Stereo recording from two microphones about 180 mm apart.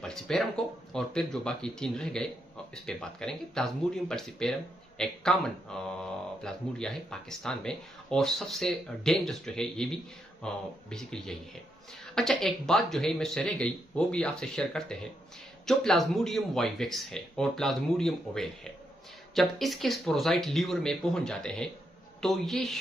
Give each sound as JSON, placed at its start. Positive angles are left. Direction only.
{"t": 0.0, "sound": "speech", "side_deg": 0}